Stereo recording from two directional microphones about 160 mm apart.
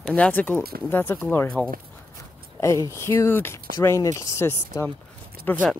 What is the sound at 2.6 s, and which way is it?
Speech, 20° left (ahead or behind).